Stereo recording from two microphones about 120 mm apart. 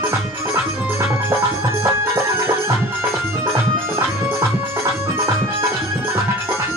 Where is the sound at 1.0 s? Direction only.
20° right (ahead or behind).